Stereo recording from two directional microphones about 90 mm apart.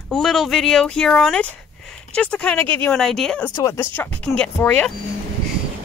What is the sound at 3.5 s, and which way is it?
Speech, 35° left (ahead or behind).